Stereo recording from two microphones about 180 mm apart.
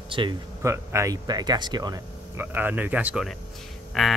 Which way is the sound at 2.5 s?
10° right (ahead or behind).